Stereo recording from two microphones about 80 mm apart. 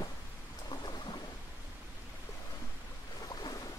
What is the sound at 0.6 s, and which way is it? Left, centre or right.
Thunder, left.